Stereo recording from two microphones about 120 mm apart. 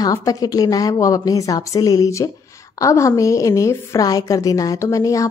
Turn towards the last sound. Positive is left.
turn(degrees=25)  # may be behind; listen again after turning